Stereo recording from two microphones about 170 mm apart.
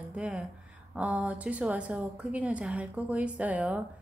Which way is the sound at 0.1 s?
5° right (ahead or behind).